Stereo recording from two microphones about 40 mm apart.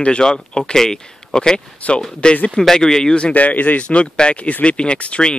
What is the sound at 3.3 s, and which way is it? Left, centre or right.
Speech, left.